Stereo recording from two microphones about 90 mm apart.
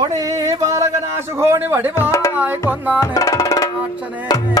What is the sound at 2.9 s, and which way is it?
Music, 35° left (ahead or behind).